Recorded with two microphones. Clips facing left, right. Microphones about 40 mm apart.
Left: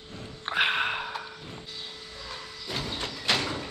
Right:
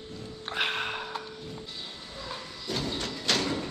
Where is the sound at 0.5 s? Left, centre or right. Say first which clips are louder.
Left 5 dB; left.